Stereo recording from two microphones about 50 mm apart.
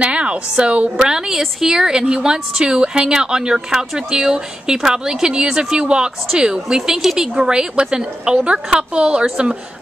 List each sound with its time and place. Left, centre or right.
0.0 s a woman's voice: right
0.9 s speech: centre